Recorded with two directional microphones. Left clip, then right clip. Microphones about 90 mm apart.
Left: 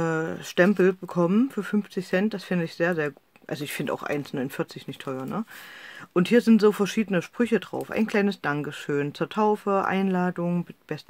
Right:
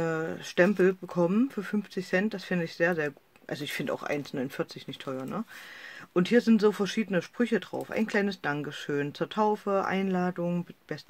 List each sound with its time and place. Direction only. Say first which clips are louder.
0.0 s speech: left 4 dB; 40° left (ahead or behind)